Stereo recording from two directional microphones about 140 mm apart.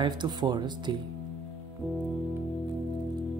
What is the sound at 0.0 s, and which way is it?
Speech, 30° right (ahead or behind).